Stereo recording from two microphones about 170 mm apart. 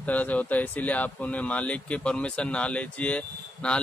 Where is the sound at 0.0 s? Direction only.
10° left (ahead or behind).